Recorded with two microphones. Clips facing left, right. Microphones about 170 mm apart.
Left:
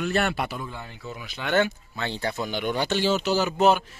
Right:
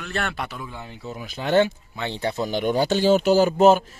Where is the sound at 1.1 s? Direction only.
40° right (ahead or behind).